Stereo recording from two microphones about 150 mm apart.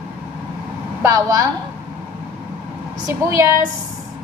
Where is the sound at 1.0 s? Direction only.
20° right (ahead or behind).